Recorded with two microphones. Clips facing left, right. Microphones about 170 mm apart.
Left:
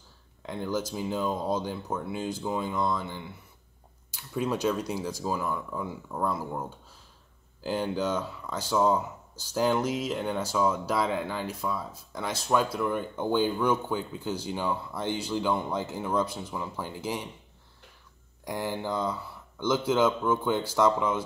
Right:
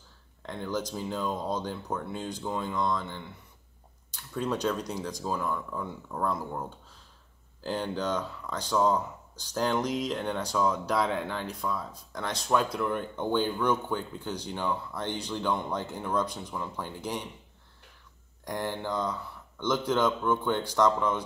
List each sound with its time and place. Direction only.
0.4 s speech: 5° left (ahead or behind)
7.6 s speech: 10° left (ahead or behind)
18.4 s speech: 5° left (ahead or behind)